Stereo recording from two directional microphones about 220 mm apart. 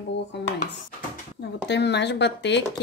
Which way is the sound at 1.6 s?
50° left (ahead or behind).